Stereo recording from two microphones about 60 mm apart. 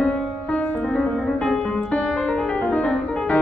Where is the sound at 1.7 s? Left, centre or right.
Left.